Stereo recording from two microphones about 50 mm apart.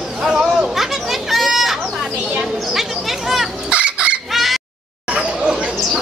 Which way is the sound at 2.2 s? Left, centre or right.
Right.